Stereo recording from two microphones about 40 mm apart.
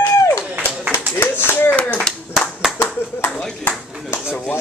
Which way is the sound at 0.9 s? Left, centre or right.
Left.